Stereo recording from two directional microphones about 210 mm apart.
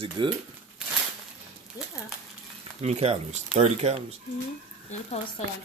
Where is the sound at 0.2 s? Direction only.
20° right (ahead or behind).